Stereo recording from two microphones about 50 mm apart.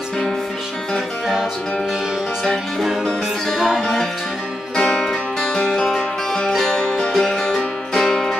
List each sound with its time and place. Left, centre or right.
3.1 s music: centre
4.7 s music: centre